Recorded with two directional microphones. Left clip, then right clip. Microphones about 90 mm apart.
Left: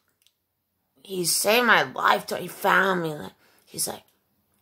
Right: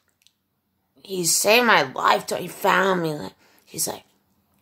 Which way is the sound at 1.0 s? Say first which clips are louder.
Right 3 dB; 20° right (ahead or behind).